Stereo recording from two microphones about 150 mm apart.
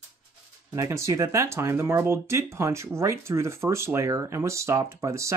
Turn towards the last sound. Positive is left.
turn(degrees=-20)  # may be behind; listen again after turning